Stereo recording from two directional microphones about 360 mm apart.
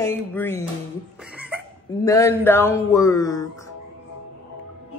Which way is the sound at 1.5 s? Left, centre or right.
Centre.